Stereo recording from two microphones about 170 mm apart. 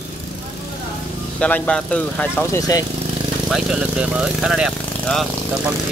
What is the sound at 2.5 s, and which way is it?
Speech, 20° left (ahead or behind).